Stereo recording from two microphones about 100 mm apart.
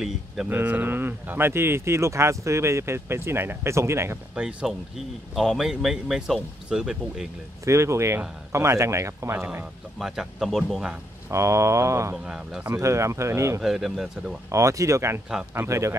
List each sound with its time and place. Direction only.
0.5 s speech: 20° right (ahead or behind)
4.4 s speech: 10° right (ahead or behind)
7.6 s speech: 30° right (ahead or behind)
9.9 s speech: 5° right (ahead or behind)
11.2 s speech: 30° right (ahead or behind)
12.3 s speech: 10° right (ahead or behind)
12.7 s speech: 30° right (ahead or behind)
13.6 s speech: centre (ahead or behind)
14.5 s speech: 30° right (ahead or behind)